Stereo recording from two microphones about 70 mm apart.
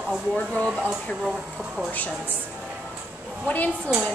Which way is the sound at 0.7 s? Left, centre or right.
Centre.